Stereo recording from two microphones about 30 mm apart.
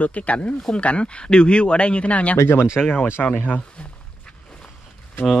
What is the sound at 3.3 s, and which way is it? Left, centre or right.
Speech, left.